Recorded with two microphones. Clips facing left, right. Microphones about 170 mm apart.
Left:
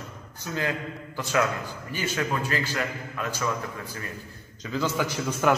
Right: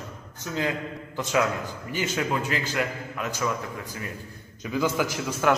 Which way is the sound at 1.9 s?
20° right (ahead or behind).